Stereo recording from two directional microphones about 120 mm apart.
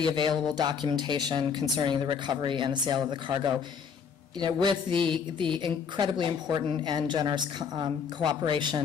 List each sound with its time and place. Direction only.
0.0 s speech: 40° right (ahead or behind)